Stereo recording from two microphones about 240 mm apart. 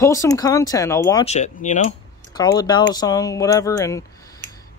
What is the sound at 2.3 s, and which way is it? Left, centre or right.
Speech, centre.